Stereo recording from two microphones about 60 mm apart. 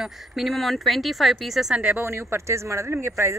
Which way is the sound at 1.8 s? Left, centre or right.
Right.